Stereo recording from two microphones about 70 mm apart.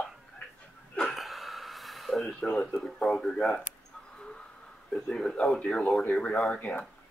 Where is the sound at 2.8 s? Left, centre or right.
Centre.